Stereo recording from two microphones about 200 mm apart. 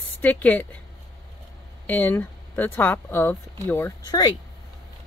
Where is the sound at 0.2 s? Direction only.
5° left (ahead or behind).